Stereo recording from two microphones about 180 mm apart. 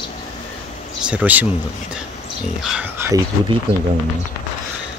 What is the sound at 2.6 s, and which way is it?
Speech, 10° right (ahead or behind).